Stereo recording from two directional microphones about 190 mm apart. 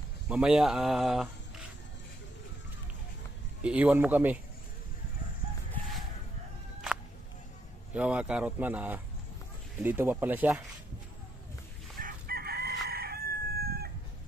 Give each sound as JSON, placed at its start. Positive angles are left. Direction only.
{"t": 0.3, "sound": "speech", "side_deg": -5}
{"t": 3.6, "sound": "speech", "side_deg": -10}
{"t": 7.9, "sound": "speech", "side_deg": -5}
{"t": 12.0, "sound": "chicken", "side_deg": -55}